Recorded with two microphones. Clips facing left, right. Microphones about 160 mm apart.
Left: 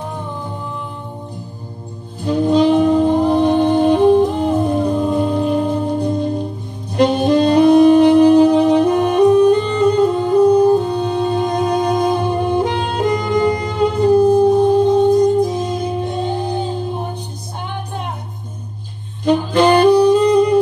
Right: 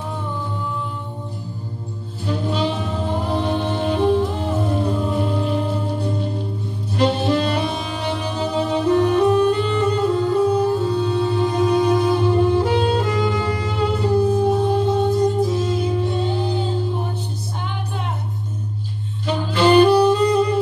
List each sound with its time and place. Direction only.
2.2 s music: 15° left (ahead or behind)
7.0 s saxophone: 15° left (ahead or behind)
10.6 s music: 20° left (ahead or behind)
19.2 s saxophone: 15° left (ahead or behind)